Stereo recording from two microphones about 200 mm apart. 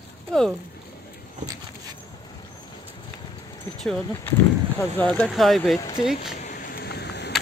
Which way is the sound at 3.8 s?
Centre (ahead or behind).